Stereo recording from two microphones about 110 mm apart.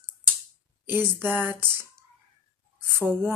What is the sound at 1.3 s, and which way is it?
Speech, 20° right (ahead or behind).